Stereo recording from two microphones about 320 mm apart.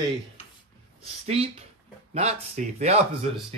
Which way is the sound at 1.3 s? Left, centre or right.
Centre.